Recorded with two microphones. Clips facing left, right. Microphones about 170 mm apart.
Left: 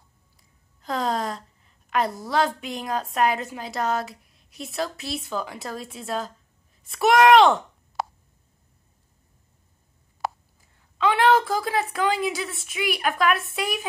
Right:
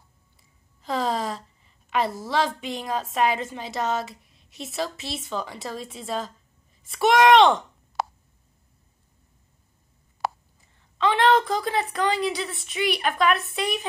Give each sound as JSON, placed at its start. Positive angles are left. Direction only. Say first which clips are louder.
{"t": 0.8, "sound": "a woman's voice", "louder": "even", "side_deg": 0}
{"t": 8.0, "sound": "a sound", "louder": "right 1 dB", "side_deg": -70}
{"t": 10.2, "sound": "whispering", "louder": "right 1 dB", "side_deg": -70}
{"t": 11.0, "sound": "a woman's voice", "louder": "even", "side_deg": 5}